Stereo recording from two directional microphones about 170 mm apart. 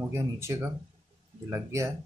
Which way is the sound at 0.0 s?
15° right (ahead or behind).